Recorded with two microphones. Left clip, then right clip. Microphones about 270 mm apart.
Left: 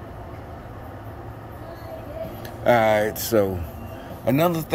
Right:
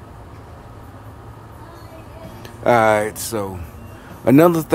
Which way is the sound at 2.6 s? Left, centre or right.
Centre.